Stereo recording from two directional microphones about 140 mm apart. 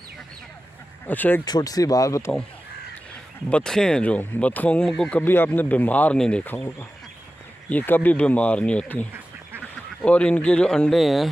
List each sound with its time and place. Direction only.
1.0 s speech: 10° left (ahead or behind)
1.4 s speech: 25° left (ahead or behind)
3.4 s speech: 5° left (ahead or behind)
10.0 s speech: 10° left (ahead or behind)